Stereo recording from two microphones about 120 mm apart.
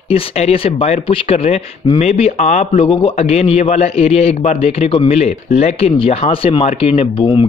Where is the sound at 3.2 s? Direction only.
60° left (ahead or behind); by 7.4 s 45° left (ahead or behind).